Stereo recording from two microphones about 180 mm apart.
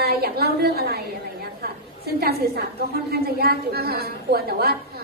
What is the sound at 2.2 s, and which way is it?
A woman's voice, 60° right (ahead or behind).